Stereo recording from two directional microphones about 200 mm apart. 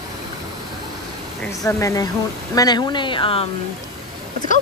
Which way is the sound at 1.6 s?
15° left (ahead or behind).